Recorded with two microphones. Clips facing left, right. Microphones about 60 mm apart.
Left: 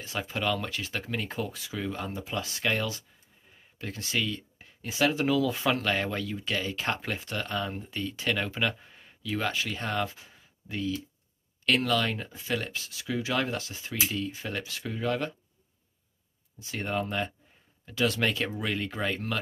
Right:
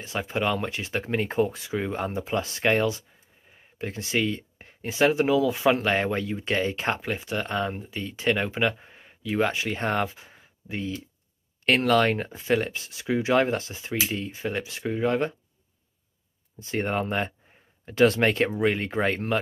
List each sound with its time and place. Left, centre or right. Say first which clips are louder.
0.2 s speech: right 4 dB; right
7.1 s speech: right 4 dB; centre
7.8 s speech: right 4 dB; centre
16.5 s speech: right 5 dB; right